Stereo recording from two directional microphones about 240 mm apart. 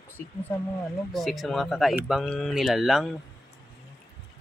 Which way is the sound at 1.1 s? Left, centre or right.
Centre.